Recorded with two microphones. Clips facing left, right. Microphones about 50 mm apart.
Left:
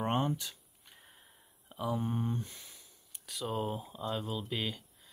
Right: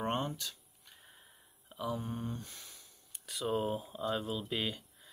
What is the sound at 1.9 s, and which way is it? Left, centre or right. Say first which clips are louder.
Speech: left 4 dB; left.